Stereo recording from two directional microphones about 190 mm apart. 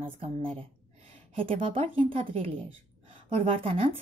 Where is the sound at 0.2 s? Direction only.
30° right (ahead or behind).